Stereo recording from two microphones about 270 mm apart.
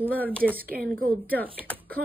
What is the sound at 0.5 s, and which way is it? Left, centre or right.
Speech, right.